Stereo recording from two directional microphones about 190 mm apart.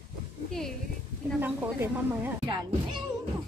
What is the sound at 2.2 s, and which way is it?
Speech, 20° right (ahead or behind).